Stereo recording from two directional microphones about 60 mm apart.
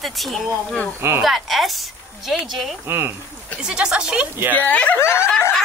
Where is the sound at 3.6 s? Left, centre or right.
Centre.